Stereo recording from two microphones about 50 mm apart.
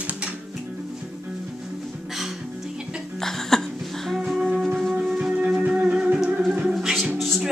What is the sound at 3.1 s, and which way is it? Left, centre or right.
Cough, centre.